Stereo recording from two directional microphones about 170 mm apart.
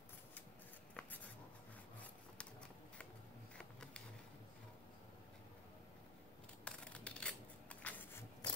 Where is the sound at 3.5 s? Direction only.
5° left (ahead or behind).